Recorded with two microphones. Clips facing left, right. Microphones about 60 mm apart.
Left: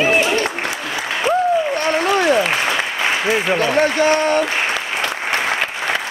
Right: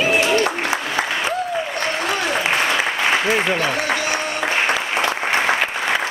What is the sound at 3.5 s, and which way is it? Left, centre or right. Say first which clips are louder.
Speech: left 4 dB; left.